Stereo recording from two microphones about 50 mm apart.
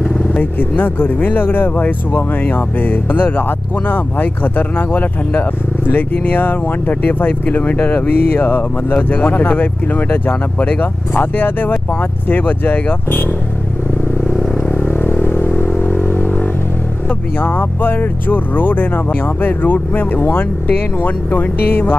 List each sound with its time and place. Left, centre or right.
0.4 s speech: left
8.9 s speech: left
14.7 s vehicle: left
17.4 s speech: left